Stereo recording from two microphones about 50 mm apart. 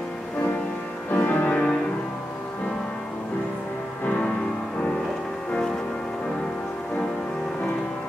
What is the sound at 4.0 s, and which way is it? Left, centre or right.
Music, left.